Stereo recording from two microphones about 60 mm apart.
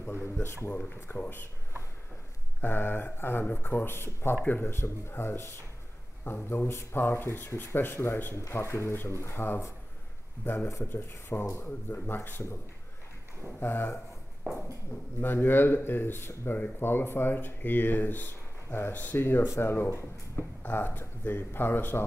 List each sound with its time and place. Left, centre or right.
0.2 s speech: left
0.7 s speech: left
2.6 s speech: left
8.4 s speech: left
13.6 s speech: left
15.1 s speech: left
16.4 s speech: left
16.8 s speech: left